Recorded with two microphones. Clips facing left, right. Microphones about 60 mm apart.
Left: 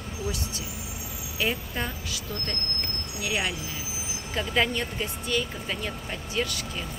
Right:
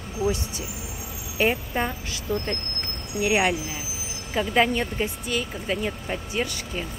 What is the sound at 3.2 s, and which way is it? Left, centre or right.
Speech, right.